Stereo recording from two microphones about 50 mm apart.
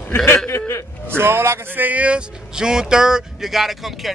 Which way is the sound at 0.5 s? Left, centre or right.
Left.